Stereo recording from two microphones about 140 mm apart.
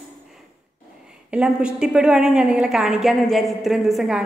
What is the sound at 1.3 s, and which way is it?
A woman's voice, 5° right (ahead or behind).